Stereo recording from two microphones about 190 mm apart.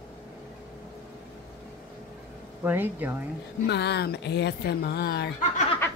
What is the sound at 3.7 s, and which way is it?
Speech, 60° left (ahead or behind).